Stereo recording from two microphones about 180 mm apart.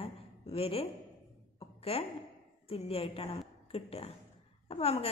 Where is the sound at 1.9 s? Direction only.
35° left (ahead or behind).